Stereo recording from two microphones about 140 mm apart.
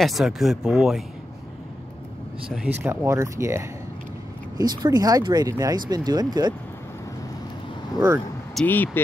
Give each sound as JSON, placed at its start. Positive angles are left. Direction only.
{"t": 0.0, "sound": "speech", "side_deg": 0}
{"t": 2.5, "sound": "speech", "side_deg": -10}
{"t": 8.6, "sound": "speech", "side_deg": 15}